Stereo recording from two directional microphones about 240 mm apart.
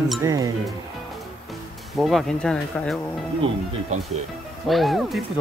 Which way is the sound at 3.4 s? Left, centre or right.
Right.